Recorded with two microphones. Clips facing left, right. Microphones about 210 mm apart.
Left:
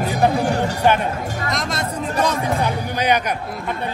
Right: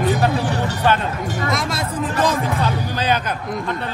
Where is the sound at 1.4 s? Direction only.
5° right (ahead or behind).